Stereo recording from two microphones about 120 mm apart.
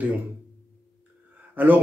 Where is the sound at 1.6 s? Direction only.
15° right (ahead or behind).